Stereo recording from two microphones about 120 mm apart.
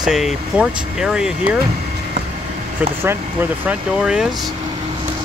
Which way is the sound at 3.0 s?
20° right (ahead or behind).